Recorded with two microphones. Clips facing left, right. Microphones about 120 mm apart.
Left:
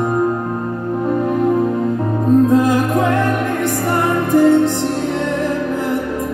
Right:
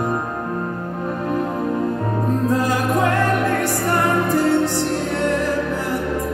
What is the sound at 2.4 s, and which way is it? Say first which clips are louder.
Music: left 6 dB; 20° left (ahead or behind).